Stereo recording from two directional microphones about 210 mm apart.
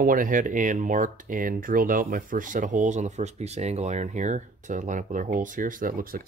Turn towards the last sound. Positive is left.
turn(degrees=-45)  # may be behind; listen again after turning